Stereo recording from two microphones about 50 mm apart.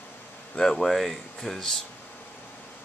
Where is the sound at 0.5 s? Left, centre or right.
Centre.